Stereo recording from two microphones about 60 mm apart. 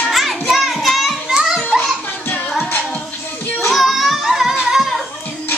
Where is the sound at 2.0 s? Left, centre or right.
Left.